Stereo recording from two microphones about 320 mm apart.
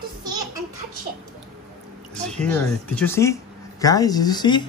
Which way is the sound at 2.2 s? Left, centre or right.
Centre.